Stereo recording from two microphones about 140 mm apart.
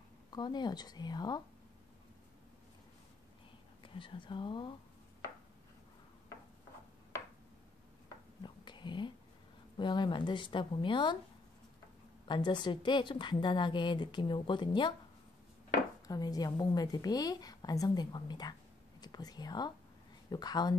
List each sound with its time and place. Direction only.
0.3 s a woman's voice: 30° left (ahead or behind)
3.8 s a woman's voice: 35° left (ahead or behind)
8.4 s whispering: 35° left (ahead or behind)
9.8 s a woman's voice: 35° left (ahead or behind)
12.3 s a woman's voice: 35° left (ahead or behind)
16.1 s a woman's voice: 25° left (ahead or behind)